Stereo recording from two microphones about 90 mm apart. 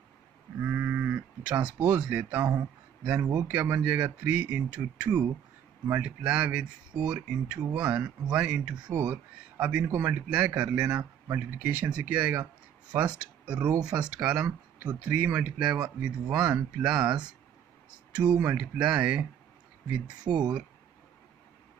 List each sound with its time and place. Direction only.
0.6 s sheep: 20° right (ahead or behind)
1.8 s speech: 15° right (ahead or behind)